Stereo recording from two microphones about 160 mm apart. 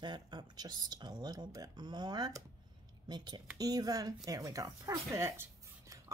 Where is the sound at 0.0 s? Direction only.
30° right (ahead or behind).